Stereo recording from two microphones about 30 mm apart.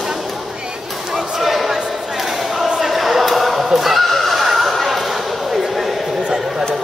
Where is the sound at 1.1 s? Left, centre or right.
Centre.